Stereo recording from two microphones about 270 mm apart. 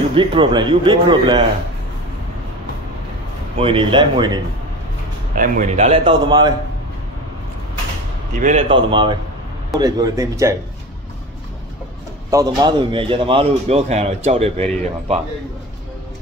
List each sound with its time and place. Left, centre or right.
0.1 s speech: centre
3.5 s speech: centre
5.3 s a man's voice: right
8.4 s a man's voice: right
12.3 s a man's voice: centre